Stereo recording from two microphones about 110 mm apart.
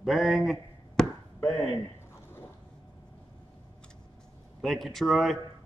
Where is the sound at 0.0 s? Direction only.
5° right (ahead or behind).